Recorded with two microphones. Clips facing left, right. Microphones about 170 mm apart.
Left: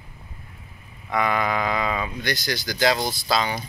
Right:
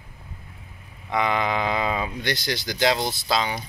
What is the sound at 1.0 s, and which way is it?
Speech, 20° right (ahead or behind).